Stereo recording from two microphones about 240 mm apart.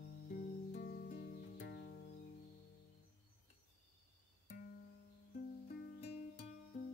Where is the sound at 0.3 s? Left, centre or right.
Left.